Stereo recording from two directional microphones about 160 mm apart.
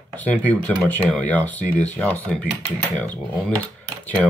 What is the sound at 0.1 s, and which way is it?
Speech, 10° left (ahead or behind).